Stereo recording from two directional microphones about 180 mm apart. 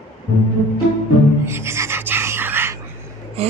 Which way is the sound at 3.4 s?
35° right (ahead or behind).